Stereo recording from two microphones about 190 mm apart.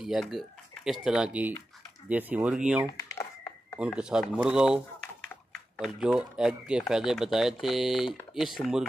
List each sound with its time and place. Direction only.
0.0 s speech: centre (ahead or behind)
2.9 s a sound: 15° left (ahead or behind)
3.8 s speech: 5° right (ahead or behind)